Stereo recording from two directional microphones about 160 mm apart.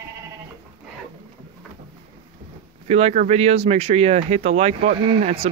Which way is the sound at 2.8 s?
40° right (ahead or behind).